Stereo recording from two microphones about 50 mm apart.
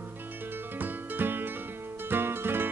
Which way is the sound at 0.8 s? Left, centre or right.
Right.